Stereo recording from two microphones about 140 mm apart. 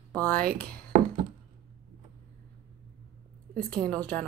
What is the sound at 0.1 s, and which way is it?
Speech, 10° left (ahead or behind).